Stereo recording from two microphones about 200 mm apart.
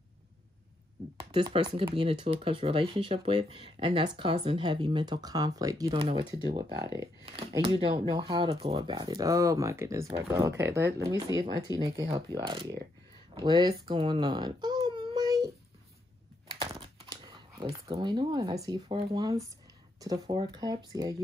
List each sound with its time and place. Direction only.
1.3 s speech: 25° right (ahead or behind)
6.8 s speech: 15° right (ahead or behind)
7.2 s speech: 25° right (ahead or behind)
13.3 s baby cry: 20° right (ahead or behind)
16.5 s speech: 25° right (ahead or behind)